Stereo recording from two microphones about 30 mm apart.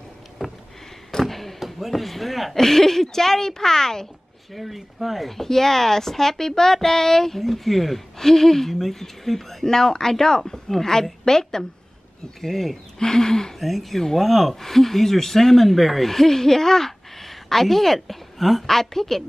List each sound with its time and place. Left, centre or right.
0.4 s a sound: centre
1.2 s a sound: centre
2.5 s speech: centre
4.6 s speech: centre
8.2 s speech: centre
9.7 s speech: centre
12.4 s speech: centre
13.0 s speech: centre
13.6 s speech: centre